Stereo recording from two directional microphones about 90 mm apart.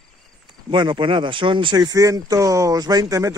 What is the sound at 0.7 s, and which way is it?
Speech, 60° right (ahead or behind).